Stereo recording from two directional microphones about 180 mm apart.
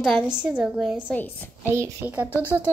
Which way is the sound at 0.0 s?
5° right (ahead or behind).